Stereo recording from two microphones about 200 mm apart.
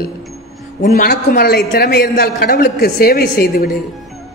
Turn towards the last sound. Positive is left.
turn(degrees=50)  # may be behind; listen again after turning